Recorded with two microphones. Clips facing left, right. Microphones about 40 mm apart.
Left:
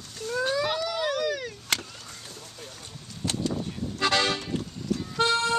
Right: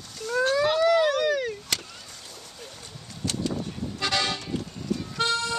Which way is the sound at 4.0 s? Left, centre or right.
Centre.